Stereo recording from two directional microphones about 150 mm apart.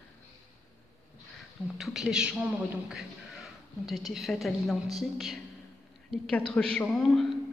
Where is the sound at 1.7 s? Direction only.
5° right (ahead or behind).